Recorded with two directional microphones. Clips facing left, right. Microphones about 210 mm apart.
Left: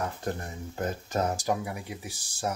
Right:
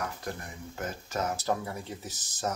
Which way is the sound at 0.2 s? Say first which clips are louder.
Left 5 dB; 30° left (ahead or behind).